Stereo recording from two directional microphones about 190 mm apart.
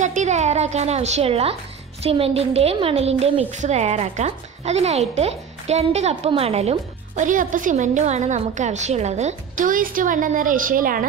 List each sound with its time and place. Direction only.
0.0 s a woman's voice: 40° right (ahead or behind)